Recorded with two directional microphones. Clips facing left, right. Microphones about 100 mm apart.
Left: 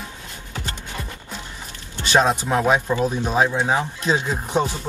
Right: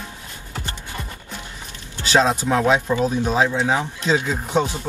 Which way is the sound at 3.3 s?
20° left (ahead or behind).